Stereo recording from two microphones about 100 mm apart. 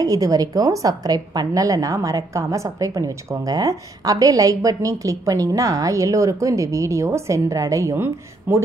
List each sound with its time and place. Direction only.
0.0 s a woman's voice: 35° right (ahead or behind)